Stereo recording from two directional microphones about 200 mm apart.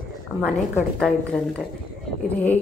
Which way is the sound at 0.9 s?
5° left (ahead or behind).